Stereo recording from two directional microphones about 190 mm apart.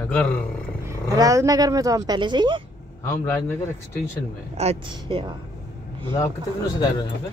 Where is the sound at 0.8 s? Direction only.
20° right (ahead or behind).